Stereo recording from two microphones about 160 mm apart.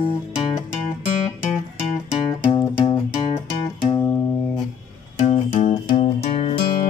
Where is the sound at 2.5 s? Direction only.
25° left (ahead or behind).